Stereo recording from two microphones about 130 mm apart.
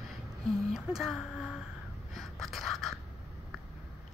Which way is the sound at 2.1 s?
Centre (ahead or behind).